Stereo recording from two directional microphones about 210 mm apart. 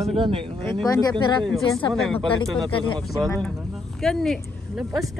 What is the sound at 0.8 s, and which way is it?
Speech, 15° left (ahead or behind).